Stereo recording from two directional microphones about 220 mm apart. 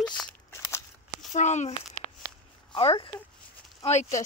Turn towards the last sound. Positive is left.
turn(degrees=30)  # may be behind; listen again after turning